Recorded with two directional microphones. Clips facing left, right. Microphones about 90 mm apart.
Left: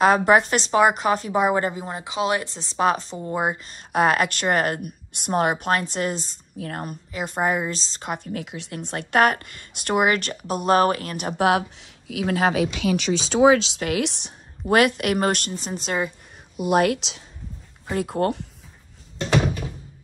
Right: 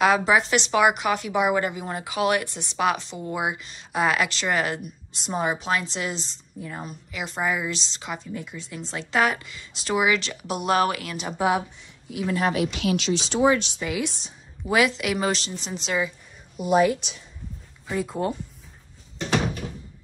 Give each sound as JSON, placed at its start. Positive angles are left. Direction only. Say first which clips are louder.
{"t": 0.0, "sound": "a woman's voice", "louder": "left 3 dB", "side_deg": 45}
{"t": 6.6, "sound": "speech", "louder": "left 4 dB", "side_deg": 65}
{"t": 7.1, "sound": "speech", "louder": "left 3 dB", "side_deg": 40}
{"t": 8.3, "sound": "speech", "louder": "left 3 dB", "side_deg": 85}
{"t": 11.1, "sound": "a woman's voice", "louder": "left 2 dB", "side_deg": 60}
{"t": 16.6, "sound": "speech", "louder": "even", "side_deg": 70}
{"t": 17.8, "sound": "speech", "louder": "left 3 dB", "side_deg": 60}